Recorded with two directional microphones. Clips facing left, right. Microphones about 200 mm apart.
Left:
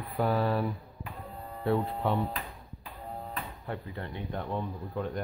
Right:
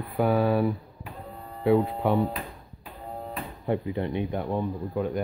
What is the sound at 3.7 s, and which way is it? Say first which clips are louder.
Speech: right 12 dB; 20° right (ahead or behind).